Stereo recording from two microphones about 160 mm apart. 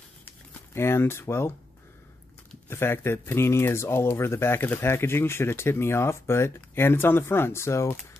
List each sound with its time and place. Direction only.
0.7 s speech: 15° left (ahead or behind)
2.7 s speech: 15° left (ahead or behind)